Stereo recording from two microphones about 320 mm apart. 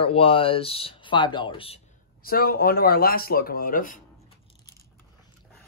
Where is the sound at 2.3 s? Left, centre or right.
Left.